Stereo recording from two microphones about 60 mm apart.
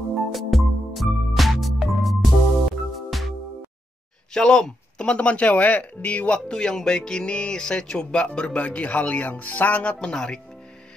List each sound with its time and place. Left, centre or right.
0.3 s music: centre
4.3 s speech: centre
9.9 s speech: centre